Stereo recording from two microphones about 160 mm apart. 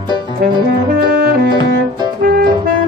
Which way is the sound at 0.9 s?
70° right (ahead or behind).